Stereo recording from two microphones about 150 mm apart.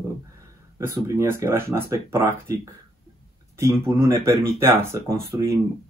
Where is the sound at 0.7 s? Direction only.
20° right (ahead or behind).